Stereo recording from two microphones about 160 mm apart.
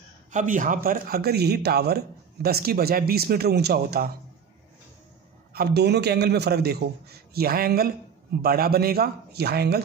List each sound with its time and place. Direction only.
0.3 s speech: 50° right (ahead or behind); by 4.1 s 75° right (ahead or behind)
5.5 s a man's voice: 80° right